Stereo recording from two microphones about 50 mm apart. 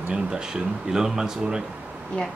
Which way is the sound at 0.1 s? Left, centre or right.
Centre.